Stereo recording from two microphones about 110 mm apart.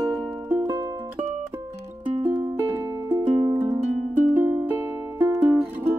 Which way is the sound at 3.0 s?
20° right (ahead or behind).